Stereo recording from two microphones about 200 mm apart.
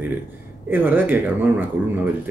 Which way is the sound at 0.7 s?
10° right (ahead or behind).